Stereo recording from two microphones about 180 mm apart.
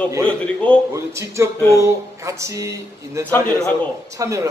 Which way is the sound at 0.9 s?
15° right (ahead or behind).